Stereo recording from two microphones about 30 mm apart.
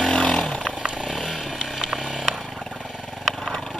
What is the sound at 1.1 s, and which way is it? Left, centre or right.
Chainsaw, centre.